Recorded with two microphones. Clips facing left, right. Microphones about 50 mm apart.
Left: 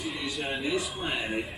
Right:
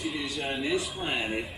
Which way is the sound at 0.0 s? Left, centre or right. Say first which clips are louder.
Right 1 dB; centre.